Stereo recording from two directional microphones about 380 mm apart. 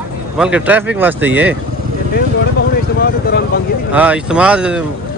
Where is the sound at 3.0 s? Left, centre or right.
Left.